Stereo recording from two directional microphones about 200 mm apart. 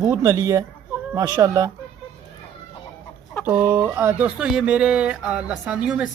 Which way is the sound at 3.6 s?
10° right (ahead or behind).